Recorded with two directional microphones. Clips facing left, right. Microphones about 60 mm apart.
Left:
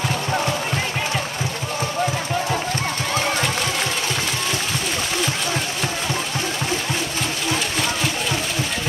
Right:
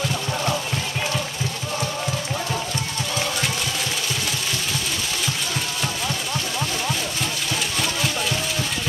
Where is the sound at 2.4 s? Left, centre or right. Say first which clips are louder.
Left 4 dB; left.